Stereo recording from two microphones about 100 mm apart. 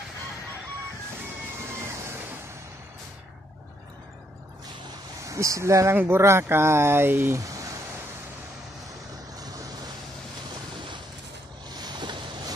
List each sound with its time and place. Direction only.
5.2 s speech: 35° right (ahead or behind)
9.4 s vehicle: 40° right (ahead or behind)
11.7 s boat: 45° right (ahead or behind)